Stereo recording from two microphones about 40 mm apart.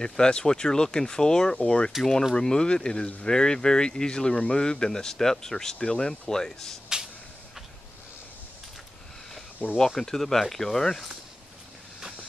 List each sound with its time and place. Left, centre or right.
0.0 s speech: centre
2.0 s speech: centre
2.3 s speech: left
9.8 s speech: centre